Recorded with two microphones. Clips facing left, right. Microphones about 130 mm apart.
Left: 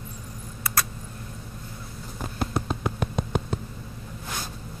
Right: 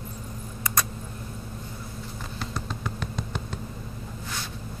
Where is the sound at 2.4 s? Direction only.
55° left (ahead or behind).